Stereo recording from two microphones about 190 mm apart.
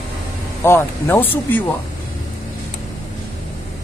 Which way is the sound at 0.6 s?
10° left (ahead or behind).